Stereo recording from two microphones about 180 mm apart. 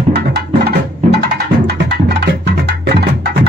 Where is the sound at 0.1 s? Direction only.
65° right (ahead or behind).